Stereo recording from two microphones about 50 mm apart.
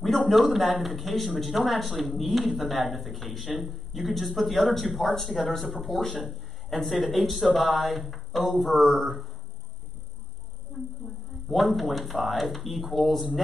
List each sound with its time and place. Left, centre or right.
0.3 s a man's voice: centre
10.7 s a sound: centre
11.4 s a man's voice: centre